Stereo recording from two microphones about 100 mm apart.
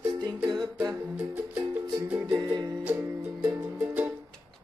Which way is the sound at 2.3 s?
40° right (ahead or behind).